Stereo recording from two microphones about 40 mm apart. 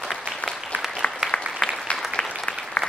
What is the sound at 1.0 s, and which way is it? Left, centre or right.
Applause, left.